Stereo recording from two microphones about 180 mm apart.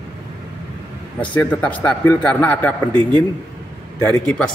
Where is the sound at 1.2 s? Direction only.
10° left (ahead or behind).